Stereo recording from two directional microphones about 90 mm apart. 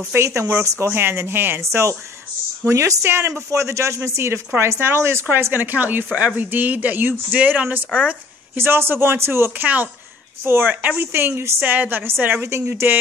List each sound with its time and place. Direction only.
0.1 s a woman's voice: 30° right (ahead or behind); by 8.2 s 15° right (ahead or behind)
8.5 s a woman's voice: 25° right (ahead or behind)